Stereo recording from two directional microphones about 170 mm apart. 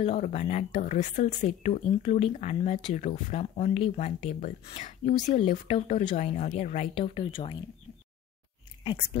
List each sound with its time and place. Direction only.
0.0 s speech: 40° left (ahead or behind)
8.8 s speech: 30° left (ahead or behind)